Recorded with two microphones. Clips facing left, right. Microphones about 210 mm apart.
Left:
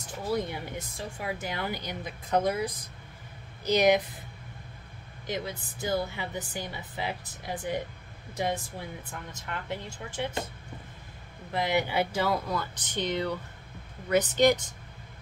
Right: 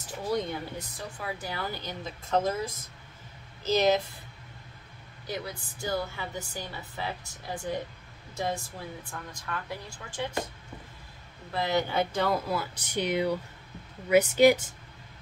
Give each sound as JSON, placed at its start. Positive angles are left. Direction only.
{"t": 0.2, "sound": "speech", "side_deg": 5}
{"t": 0.7, "sound": "a woman's voice", "side_deg": 20}
{"t": 5.2, "sound": "a woman's voice", "side_deg": 20}
{"t": 11.5, "sound": "speech", "side_deg": 15}